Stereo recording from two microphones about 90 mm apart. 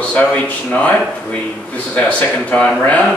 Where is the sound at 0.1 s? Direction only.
15° left (ahead or behind).